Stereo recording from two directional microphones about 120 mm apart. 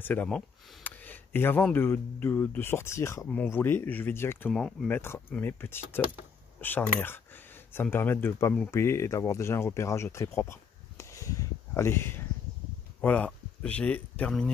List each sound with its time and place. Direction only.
0.0 s speech: 15° left (ahead or behind)
4.5 s speech: 5° left (ahead or behind)
4.8 s speech: 20° left (ahead or behind)